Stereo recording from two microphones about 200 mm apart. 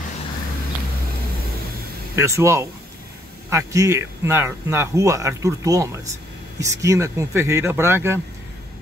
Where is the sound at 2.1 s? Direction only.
15° right (ahead or behind).